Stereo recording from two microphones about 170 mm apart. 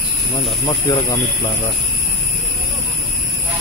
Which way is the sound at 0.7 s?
20° left (ahead or behind).